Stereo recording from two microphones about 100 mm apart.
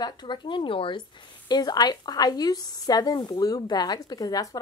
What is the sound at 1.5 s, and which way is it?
Speech, 40° left (ahead or behind).